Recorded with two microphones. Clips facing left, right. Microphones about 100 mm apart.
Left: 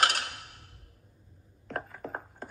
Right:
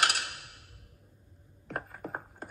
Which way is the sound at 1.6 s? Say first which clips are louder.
Left 1 dB; 10° right (ahead or behind).